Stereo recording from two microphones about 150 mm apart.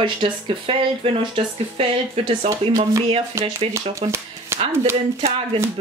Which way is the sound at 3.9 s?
15° right (ahead or behind).